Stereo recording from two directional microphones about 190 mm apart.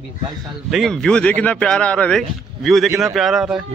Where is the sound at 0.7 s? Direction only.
Centre (ahead or behind).